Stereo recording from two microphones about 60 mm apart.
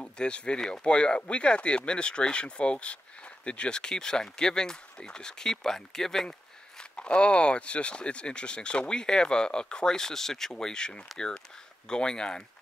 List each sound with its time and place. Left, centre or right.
0.0 s speech: centre